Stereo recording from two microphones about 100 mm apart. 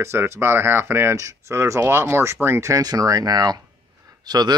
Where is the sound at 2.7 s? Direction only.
35° right (ahead or behind).